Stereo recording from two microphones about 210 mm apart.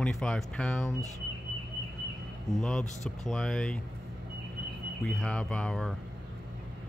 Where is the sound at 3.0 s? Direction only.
5° left (ahead or behind).